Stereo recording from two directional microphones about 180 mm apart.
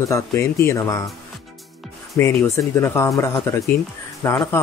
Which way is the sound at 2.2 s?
15° left (ahead or behind).